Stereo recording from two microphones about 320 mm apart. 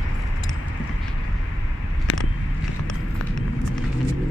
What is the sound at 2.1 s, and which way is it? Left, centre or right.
Vehicle, left.